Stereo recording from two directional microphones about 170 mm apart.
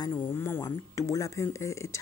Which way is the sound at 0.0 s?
20° left (ahead or behind).